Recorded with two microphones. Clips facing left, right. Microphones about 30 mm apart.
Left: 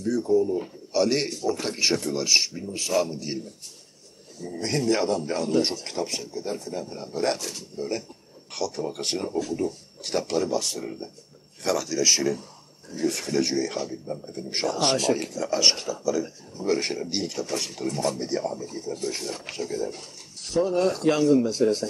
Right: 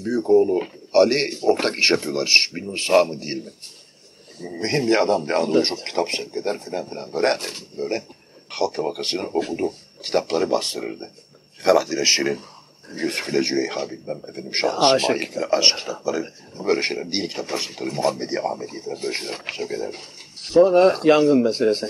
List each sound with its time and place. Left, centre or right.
0.0 s speech: right
0.3 s speech: right
1.0 s a man's voice: right
3.1 s a man's voice: right